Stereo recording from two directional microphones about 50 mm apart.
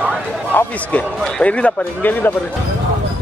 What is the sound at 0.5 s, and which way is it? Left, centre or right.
Speech, left.